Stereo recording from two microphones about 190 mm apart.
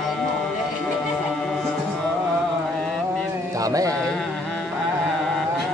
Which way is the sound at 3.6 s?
20° right (ahead or behind).